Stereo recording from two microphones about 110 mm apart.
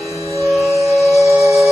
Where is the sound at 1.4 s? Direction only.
Centre (ahead or behind).